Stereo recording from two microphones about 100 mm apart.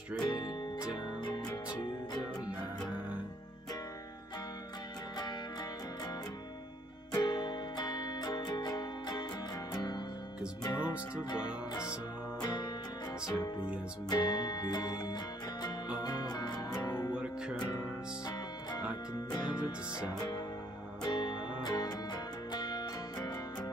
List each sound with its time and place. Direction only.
0.2 s music: 45° left (ahead or behind)
5.1 s music: 40° left (ahead or behind)
7.2 s music: 45° left (ahead or behind)
14.0 s music: 45° left (ahead or behind)
17.1 s music: 10° right (ahead or behind)
17.6 s music: 40° left (ahead or behind)
21.0 s music: 45° left (ahead or behind)